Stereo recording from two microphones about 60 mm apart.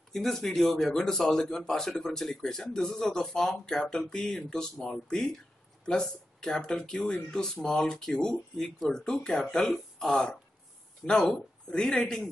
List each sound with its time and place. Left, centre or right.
0.1 s speech: centre